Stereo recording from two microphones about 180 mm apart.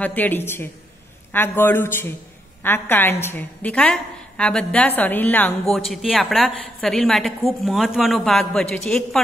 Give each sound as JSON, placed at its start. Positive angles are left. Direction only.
{"t": 0.0, "sound": "a woman's voice", "side_deg": 10}